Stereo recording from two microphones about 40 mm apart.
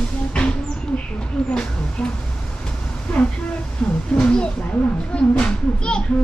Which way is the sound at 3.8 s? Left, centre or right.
Left.